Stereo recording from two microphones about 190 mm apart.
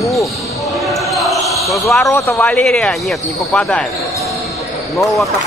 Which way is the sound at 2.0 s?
15° left (ahead or behind).